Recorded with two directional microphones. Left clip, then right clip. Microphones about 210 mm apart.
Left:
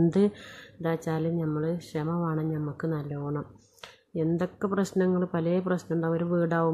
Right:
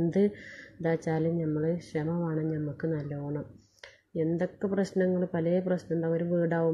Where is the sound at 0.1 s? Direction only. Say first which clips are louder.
Left 1 dB; 20° left (ahead or behind).